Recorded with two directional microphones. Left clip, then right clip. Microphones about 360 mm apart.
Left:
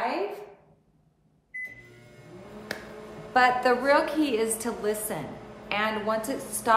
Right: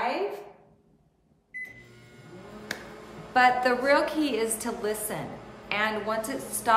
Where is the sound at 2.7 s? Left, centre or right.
Centre.